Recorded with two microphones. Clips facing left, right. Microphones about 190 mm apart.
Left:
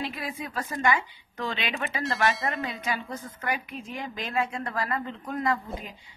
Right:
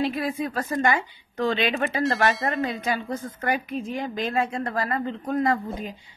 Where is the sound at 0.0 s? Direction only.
40° right (ahead or behind).